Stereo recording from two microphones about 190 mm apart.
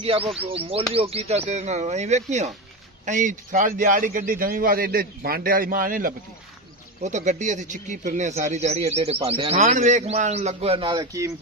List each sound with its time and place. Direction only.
0.0 s a man's voice: 30° right (ahead or behind)